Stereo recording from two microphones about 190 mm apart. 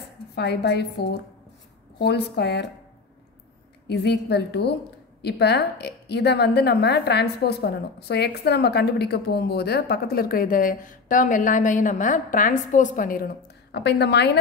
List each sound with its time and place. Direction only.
0.4 s a woman's voice: 60° left (ahead or behind)
3.9 s a woman's voice: 60° left (ahead or behind)